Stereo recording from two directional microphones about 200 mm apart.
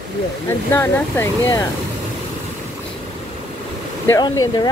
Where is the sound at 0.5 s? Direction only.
10° left (ahead or behind).